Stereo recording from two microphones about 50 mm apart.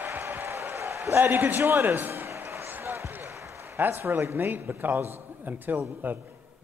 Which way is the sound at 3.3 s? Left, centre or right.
Right.